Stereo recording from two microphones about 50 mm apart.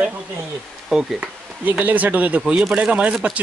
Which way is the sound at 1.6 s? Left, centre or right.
Right.